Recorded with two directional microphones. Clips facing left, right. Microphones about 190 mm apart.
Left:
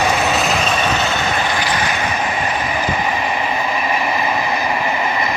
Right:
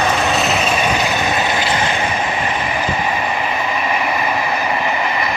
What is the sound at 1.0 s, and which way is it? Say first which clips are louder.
Vehicle: right 1 dB; 15° right (ahead or behind).